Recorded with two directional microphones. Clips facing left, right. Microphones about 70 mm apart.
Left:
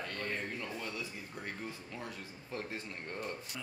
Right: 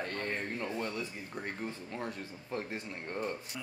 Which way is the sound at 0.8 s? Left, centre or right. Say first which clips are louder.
Right 4 dB; right.